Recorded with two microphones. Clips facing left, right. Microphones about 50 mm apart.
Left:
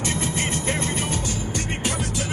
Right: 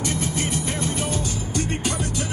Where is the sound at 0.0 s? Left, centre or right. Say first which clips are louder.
Even; left.